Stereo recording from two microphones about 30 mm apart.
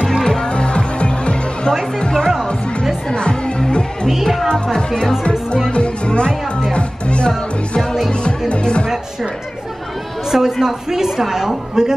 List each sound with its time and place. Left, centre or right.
0.2 s music: centre
0.5 s music: left
2.0 s music: left
4.2 s music: centre
4.7 s speech: left
5.7 s music: left
10.3 s a woman's voice: centre